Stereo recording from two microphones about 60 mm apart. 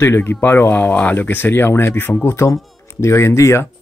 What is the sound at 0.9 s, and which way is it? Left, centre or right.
Speech, left.